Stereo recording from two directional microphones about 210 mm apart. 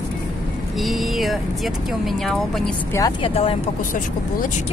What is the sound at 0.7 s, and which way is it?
Speech, centre (ahead or behind).